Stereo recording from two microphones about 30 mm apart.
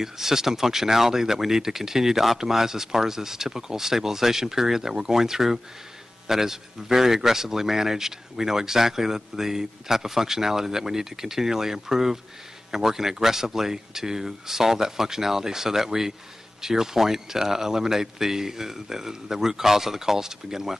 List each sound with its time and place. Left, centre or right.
0.0 s a man's voice: centre